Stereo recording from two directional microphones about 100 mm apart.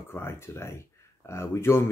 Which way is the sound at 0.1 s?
25° left (ahead or behind).